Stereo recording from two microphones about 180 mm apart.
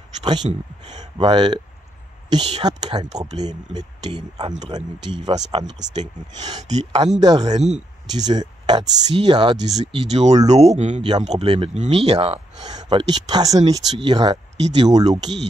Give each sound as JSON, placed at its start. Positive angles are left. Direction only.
{"t": 0.2, "sound": "speech", "side_deg": -25}
{"t": 0.5, "sound": "speech", "side_deg": -40}
{"t": 1.2, "sound": "speech", "side_deg": -25}
{"t": 6.6, "sound": "speech", "side_deg": -40}
{"t": 7.2, "sound": "speech", "side_deg": -20}
{"t": 7.5, "sound": "speech", "side_deg": -40}
{"t": 8.1, "sound": "speech", "side_deg": -20}
{"t": 9.7, "sound": "speech", "side_deg": -40}
{"t": 12.6, "sound": "speech", "side_deg": -20}